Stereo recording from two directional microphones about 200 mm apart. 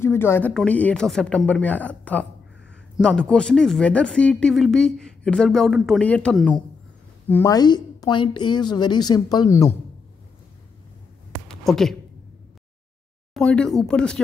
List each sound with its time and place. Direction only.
0.0 s speech: 10° left (ahead or behind)
11.4 s a sound: centre (ahead or behind)
13.3 s speech: 5° left (ahead or behind)